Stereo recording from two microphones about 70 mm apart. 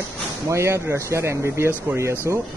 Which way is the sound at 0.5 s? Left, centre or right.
Right.